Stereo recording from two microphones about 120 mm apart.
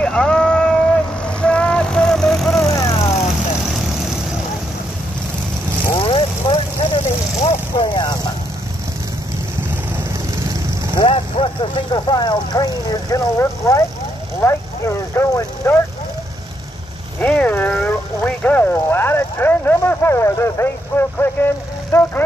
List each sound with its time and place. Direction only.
0.0 s vehicle: 5° left (ahead or behind)
2.7 s vehicle: 25° left (ahead or behind)
5.9 s vehicle: 50° left (ahead or behind)
10.3 s a sound: 25° right (ahead or behind)
11.1 s vehicle: 50° left (ahead or behind); by 15.7 s 25° left (ahead or behind)
17.2 s a sound: 15° left (ahead or behind)
21.9 s speech: 30° left (ahead or behind)